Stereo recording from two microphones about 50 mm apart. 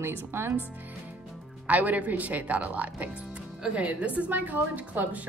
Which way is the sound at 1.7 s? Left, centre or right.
Right.